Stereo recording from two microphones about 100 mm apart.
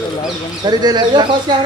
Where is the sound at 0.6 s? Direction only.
45° right (ahead or behind).